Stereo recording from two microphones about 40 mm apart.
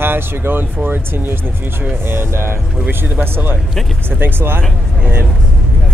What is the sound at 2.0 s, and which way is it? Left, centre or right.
Speech, right.